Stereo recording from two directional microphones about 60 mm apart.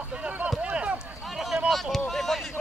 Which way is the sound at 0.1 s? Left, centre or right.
Right.